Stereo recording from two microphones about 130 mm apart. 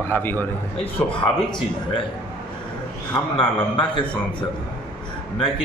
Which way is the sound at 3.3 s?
40° left (ahead or behind).